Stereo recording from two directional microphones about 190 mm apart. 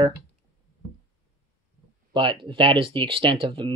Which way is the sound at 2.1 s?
25° right (ahead or behind).